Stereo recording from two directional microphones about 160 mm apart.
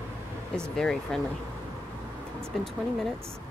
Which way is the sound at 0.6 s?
5° left (ahead or behind).